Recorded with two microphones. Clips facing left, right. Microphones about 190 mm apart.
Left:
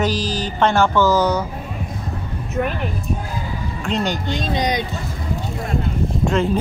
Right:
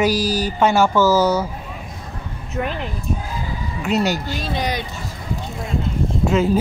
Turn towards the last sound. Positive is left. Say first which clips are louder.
# right 1 dB
turn(degrees=-5)  # may be behind; listen again after turning